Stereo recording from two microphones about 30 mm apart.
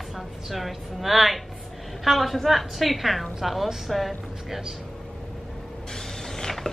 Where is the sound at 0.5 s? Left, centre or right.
Centre.